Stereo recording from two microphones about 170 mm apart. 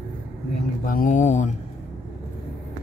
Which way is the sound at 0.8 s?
50° left (ahead or behind).